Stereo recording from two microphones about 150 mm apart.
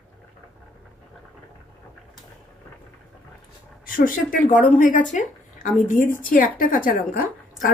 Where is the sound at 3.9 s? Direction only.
65° left (ahead or behind).